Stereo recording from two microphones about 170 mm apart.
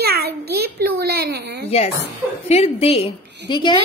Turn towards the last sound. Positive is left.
turn(degrees=25)  # may be behind; listen again after turning